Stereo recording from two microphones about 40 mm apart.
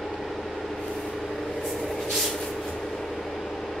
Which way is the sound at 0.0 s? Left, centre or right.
Centre.